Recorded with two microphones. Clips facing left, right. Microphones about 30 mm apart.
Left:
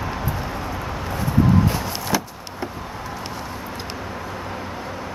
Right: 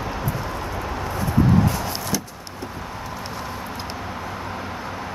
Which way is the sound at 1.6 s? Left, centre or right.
Left.